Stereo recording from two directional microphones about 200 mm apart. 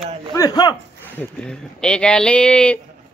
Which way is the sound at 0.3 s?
20° left (ahead or behind).